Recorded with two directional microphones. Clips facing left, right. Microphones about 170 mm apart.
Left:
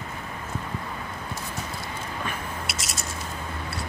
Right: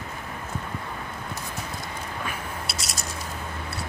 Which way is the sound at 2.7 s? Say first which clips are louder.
Even; 35° right (ahead or behind).